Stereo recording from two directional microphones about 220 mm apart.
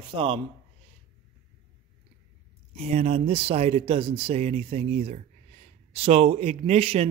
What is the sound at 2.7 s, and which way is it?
Speech, 30° right (ahead or behind).